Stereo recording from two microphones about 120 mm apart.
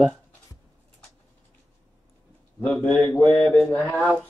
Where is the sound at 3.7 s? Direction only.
20° left (ahead or behind).